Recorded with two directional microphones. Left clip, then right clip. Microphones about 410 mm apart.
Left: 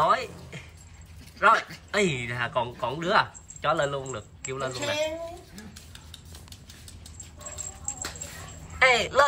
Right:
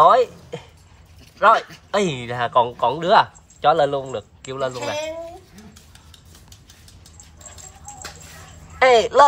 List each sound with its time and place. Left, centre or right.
0.0 s a sound: centre
1.4 s speech: centre
8.7 s speech: centre